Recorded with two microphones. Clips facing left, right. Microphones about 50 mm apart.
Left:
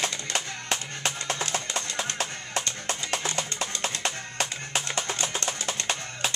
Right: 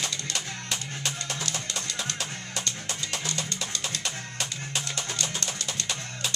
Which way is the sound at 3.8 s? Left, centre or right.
Left.